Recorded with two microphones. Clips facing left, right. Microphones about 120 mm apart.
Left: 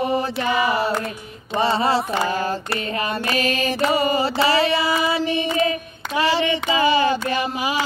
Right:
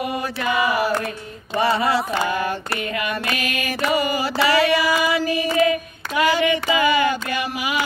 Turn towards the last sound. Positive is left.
turn(degrees=30)  # may be behind; listen again after turning